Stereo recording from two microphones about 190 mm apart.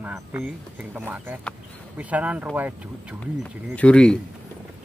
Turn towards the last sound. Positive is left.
turn(degrees=5)  # may be behind; listen again after turning